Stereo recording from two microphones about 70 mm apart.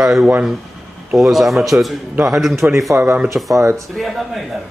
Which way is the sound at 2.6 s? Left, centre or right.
Right.